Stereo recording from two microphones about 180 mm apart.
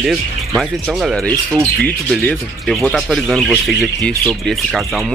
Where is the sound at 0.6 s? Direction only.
Centre (ahead or behind).